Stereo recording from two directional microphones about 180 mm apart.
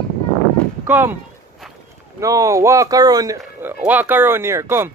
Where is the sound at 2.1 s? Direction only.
20° right (ahead or behind).